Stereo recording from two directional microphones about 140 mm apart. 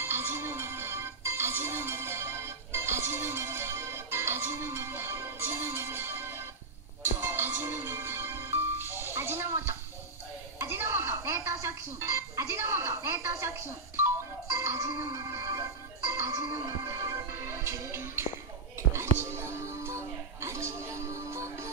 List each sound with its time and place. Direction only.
0.0 s music: 15° right (ahead or behind)
10.6 s a sound: 15° right (ahead or behind)
15.0 s music: 20° right (ahead or behind)